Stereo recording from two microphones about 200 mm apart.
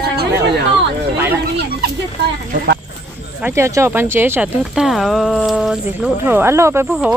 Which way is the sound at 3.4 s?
15° right (ahead or behind).